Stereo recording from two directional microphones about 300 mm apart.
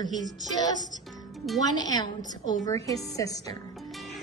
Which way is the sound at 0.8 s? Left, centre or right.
Centre.